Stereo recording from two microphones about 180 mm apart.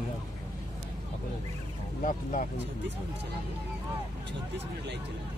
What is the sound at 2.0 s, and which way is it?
Speech, 45° left (ahead or behind).